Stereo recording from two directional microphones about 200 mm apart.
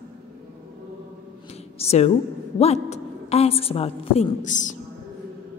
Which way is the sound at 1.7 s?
30° left (ahead or behind).